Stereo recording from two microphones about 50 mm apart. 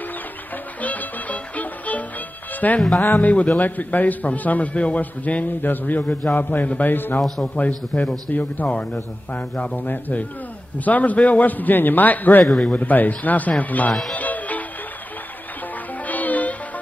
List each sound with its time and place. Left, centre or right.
0.7 s music: left
2.6 s a man's voice: left
7.2 s a man's voice: centre
7.4 s a man's voice: left
14.1 s music: left
16.1 s music: left